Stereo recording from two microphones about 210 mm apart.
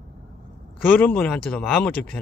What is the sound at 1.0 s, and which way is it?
Speech, 5° left (ahead or behind).